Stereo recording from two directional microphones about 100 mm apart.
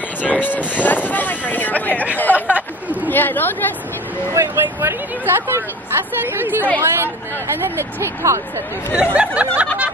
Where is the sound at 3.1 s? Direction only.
20° left (ahead or behind).